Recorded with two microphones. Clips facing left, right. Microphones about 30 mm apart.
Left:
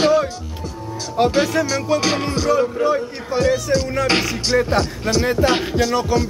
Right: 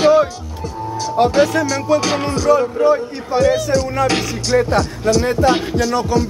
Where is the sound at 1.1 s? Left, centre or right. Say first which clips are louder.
Right 3 dB; centre.